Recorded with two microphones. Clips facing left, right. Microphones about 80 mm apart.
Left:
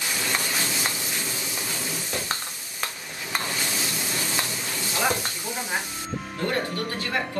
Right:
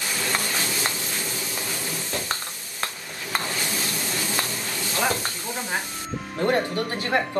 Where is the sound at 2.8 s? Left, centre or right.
Centre.